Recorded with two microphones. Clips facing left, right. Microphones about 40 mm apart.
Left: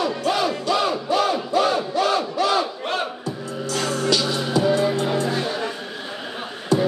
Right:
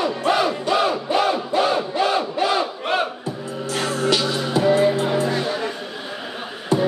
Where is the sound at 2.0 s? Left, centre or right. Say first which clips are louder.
Even; centre.